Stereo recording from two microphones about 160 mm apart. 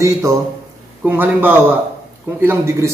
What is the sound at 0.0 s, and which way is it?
A man's voice, 20° right (ahead or behind).